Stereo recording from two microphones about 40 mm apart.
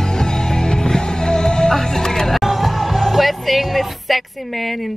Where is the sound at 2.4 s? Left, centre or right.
Centre.